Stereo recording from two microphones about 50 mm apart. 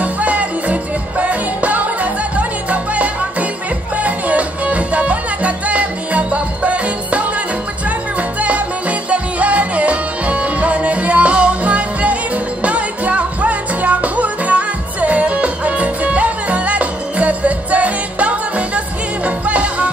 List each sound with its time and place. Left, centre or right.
0.0 s music: right